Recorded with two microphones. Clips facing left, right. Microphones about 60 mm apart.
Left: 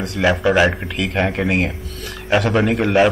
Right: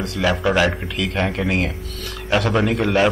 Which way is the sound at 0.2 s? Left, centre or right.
Left.